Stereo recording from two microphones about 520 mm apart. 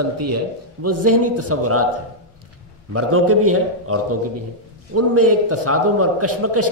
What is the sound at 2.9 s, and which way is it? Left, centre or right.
A man's voice, right.